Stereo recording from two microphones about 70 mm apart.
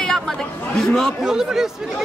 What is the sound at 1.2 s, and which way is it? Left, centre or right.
Speech, centre.